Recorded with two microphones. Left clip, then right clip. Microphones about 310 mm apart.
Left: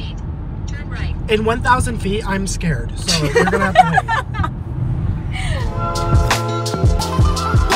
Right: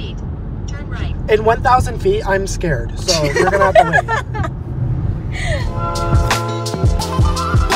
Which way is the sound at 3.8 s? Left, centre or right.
Centre.